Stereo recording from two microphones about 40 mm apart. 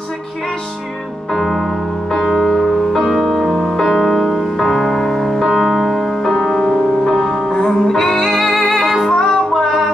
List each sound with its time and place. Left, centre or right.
1.3 s music: centre